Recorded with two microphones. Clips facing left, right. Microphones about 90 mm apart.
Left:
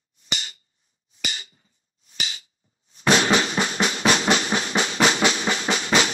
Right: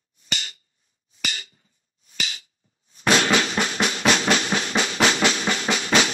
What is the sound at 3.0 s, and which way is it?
Drum, 15° left (ahead or behind).